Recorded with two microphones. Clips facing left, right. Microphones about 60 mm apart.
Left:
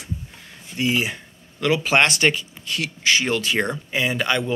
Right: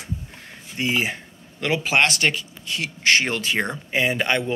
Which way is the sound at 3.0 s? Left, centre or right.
Right.